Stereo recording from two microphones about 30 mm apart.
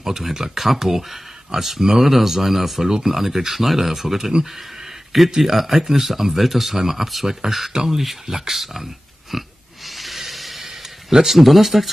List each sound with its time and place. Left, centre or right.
0.0 s speech: centre
5.4 s speech: centre
7.7 s speech: centre
8.0 s speech: centre
9.8 s snort: centre
10.6 s a sound: centre
11.3 s speech: centre